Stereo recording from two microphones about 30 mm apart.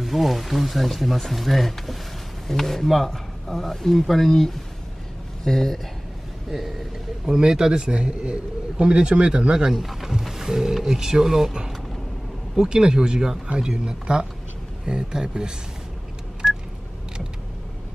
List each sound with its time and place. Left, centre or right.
0.0 s speech: centre
5.4 s speech: centre
7.2 s a man's voice: centre
10.2 s speech: centre
12.5 s speech: right